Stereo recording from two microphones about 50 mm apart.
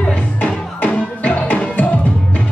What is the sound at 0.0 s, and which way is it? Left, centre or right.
Music, left.